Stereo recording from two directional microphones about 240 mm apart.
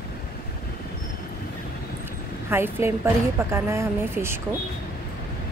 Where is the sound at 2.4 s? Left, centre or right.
Centre.